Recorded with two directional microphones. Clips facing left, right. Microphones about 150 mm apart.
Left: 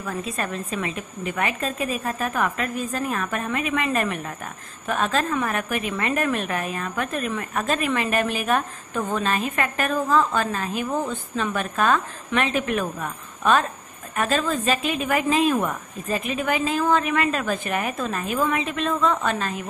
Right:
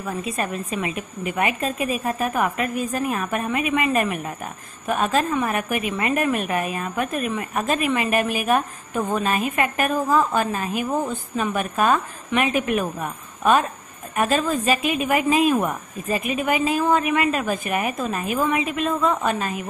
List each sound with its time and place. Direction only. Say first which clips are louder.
0.2 s a woman's voice: right 2 dB; 5° right (ahead or behind)
5.5 s a woman's voice: right 2 dB; 15° right (ahead or behind)